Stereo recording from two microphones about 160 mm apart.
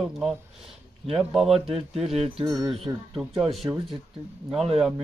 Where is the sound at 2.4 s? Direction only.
25° right (ahead or behind).